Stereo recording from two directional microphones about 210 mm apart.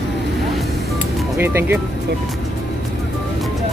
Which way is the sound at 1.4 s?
10° right (ahead or behind).